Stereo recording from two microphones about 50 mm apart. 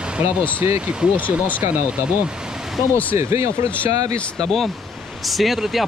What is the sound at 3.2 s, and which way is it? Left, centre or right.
Speech, right.